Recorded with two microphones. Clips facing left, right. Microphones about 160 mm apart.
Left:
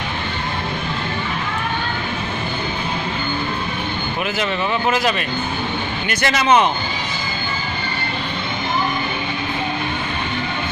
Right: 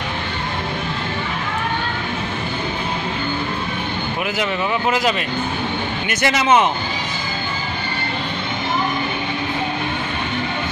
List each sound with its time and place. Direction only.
4.4 s speech: 15° right (ahead or behind)